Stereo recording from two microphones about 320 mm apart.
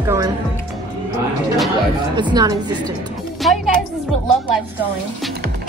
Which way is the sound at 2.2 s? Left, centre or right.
Centre.